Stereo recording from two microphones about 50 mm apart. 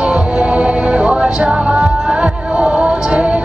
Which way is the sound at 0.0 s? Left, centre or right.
Centre.